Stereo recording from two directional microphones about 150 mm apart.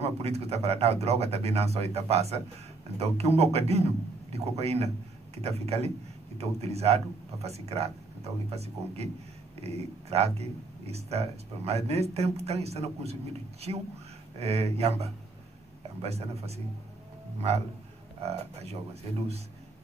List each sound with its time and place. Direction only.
0.0 s a man's voice: 45° right (ahead or behind)
18.2 s a man's voice: 45° right (ahead or behind)